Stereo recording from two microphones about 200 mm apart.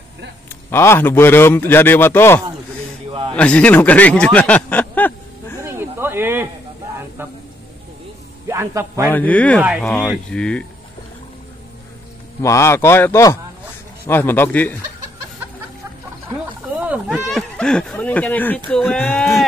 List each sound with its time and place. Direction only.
0.7 s a man's voice: 10° left (ahead or behind)
3.1 s a sound: 30° right (ahead or behind)
3.3 s speech: 5° left (ahead or behind)
5.6 s snake: 10° right (ahead or behind)
7.2 s a man's voice: 10° right (ahead or behind)
8.5 s a man's voice: 15° right (ahead or behind)
9.1 s a man's voice: 10° left (ahead or behind)
12.4 s a man's voice: 15° left (ahead or behind)
16.8 s a sound: 5° right (ahead or behind)
17.9 s a man's voice: 10° left (ahead or behind)